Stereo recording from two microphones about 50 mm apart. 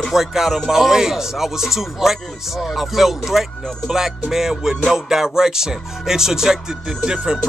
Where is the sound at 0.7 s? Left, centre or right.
Centre.